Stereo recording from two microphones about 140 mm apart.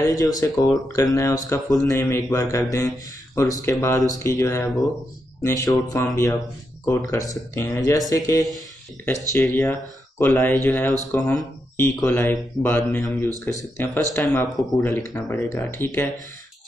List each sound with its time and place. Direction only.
0.1 s speech: 25° left (ahead or behind)